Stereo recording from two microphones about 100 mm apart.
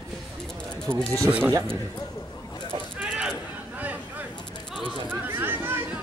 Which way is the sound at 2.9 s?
15° right (ahead or behind).